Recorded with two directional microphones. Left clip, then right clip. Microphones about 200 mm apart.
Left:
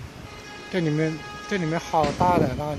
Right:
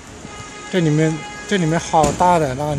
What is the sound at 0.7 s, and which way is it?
Speech, 10° right (ahead or behind).